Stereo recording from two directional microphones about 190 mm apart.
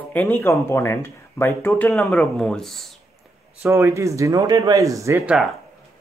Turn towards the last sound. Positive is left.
turn(degrees=-15)  # may be behind; listen again after turning